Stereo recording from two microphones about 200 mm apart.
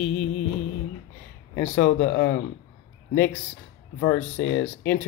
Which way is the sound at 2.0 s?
60° left (ahead or behind).